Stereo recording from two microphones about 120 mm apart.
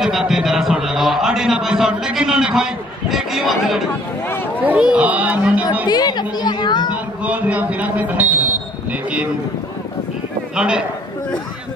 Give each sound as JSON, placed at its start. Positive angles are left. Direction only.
{"t": 0.0, "sound": "a sound", "side_deg": -5}
{"t": 4.6, "sound": "speech", "side_deg": -10}
{"t": 5.9, "sound": "a woman's voice", "side_deg": 35}
{"t": 7.2, "sound": "speech", "side_deg": -10}
{"t": 10.5, "sound": "a man's voice", "side_deg": -5}